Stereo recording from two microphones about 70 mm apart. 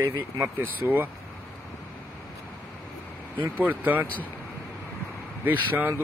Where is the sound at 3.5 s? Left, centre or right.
Right.